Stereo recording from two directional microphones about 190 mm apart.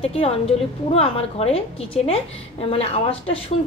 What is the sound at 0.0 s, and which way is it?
A woman's voice, 30° left (ahead or behind).